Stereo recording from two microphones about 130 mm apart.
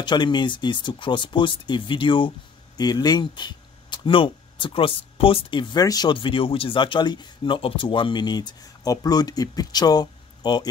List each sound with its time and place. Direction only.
0.0 s speech: 35° left (ahead or behind)